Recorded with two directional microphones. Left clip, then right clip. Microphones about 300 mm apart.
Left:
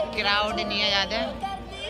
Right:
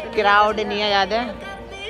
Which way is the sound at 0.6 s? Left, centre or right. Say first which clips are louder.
Right 3 dB; centre.